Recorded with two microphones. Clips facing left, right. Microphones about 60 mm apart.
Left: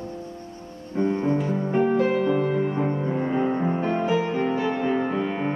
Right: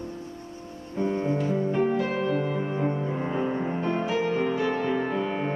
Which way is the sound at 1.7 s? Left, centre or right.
Centre.